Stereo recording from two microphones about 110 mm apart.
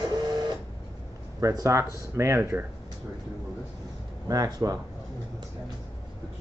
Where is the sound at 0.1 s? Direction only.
40° right (ahead or behind).